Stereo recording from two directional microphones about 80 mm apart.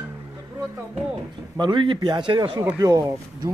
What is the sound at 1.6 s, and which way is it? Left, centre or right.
Speech, right.